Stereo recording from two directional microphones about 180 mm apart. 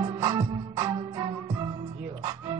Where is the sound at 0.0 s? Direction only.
25° right (ahead or behind).